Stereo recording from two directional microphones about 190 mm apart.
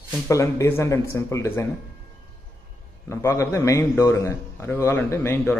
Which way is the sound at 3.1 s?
15° left (ahead or behind).